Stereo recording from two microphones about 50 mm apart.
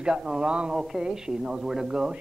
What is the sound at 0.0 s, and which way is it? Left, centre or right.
A woman's voice, centre.